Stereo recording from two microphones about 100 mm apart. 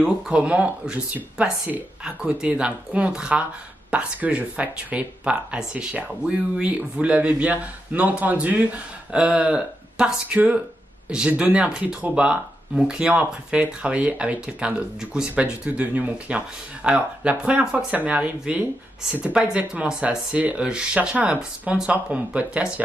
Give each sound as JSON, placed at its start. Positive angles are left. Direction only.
{"t": 0.0, "sound": "speech", "side_deg": -10}